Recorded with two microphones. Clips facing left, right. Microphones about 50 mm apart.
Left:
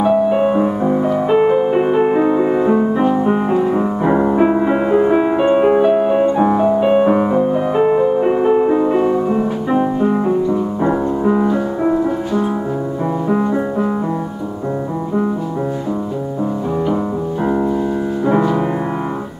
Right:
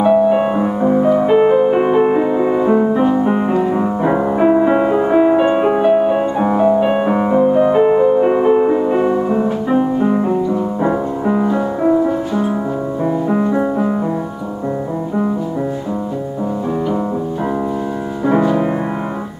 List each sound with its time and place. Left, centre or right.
0.0 s music: centre
13.0 s music: centre
18.2 s music: centre